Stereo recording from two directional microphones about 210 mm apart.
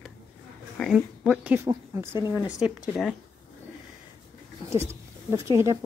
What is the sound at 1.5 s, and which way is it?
Speech, 15° right (ahead or behind).